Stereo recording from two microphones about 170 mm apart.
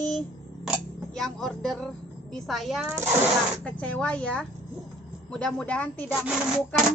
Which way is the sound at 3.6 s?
5° left (ahead or behind).